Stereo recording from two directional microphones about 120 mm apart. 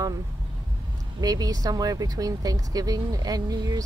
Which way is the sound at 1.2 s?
30° right (ahead or behind).